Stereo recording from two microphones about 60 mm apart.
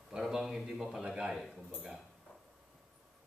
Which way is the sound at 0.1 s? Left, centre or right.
Centre.